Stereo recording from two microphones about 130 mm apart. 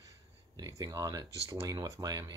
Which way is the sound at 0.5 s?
30° right (ahead or behind).